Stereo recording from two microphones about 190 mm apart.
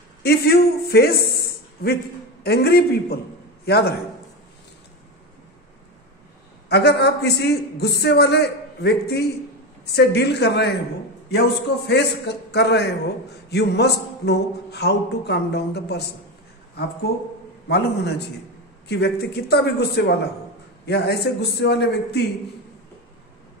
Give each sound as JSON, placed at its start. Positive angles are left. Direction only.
{"t": 0.2, "sound": "a man's voice", "side_deg": 55}
{"t": 2.4, "sound": "a man's voice", "side_deg": 55}
{"t": 6.7, "sound": "a man's voice", "side_deg": 60}
{"t": 17.6, "sound": "a man's voice", "side_deg": 60}